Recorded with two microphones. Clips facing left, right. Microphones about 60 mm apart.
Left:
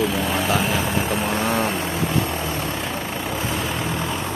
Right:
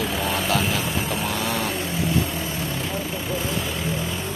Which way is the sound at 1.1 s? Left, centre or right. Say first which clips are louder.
Left 5 dB; left.